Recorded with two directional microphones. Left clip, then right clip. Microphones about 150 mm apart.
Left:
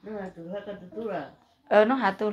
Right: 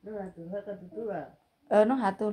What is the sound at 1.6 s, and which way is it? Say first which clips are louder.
Speech: left 3 dB; 35° right (ahead or behind).